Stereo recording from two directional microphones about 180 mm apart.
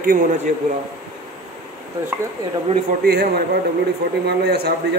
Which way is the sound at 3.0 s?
60° right (ahead or behind).